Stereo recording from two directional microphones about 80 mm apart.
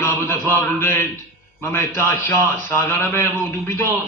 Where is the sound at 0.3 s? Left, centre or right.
Left.